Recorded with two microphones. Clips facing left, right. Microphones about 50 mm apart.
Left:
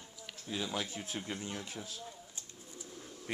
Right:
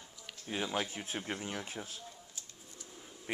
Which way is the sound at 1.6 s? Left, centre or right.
Right.